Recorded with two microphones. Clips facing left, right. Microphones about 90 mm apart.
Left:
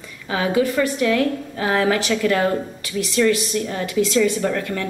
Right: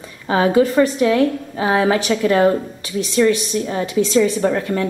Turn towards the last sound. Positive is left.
turn(degrees=-20)  # may be behind; listen again after turning